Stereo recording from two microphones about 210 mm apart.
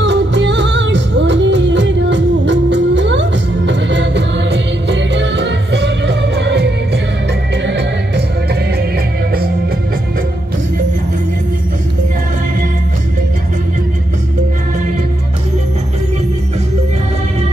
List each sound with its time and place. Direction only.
0.0 s music: 55° right (ahead or behind)